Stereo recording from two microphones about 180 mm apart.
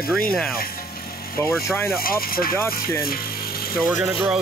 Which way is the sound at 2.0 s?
55° left (ahead or behind).